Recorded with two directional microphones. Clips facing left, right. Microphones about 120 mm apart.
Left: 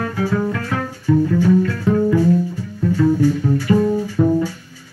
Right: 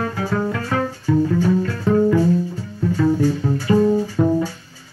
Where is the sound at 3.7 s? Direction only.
25° right (ahead or behind).